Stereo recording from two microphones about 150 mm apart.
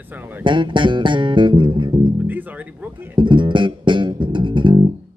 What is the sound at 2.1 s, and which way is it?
Speech, 10° right (ahead or behind).